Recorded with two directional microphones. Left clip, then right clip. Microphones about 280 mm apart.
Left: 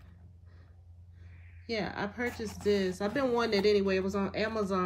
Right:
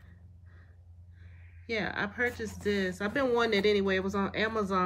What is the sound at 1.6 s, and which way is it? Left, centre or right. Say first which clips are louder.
Speech: right 2 dB; centre.